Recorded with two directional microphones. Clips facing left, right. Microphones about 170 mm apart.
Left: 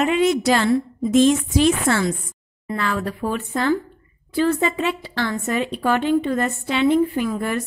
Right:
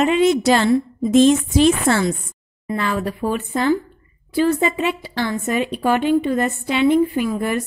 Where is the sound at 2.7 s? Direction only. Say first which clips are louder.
Right 2 dB; 20° right (ahead or behind).